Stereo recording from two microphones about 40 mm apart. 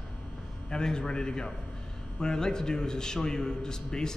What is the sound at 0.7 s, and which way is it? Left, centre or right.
A man's voice, centre.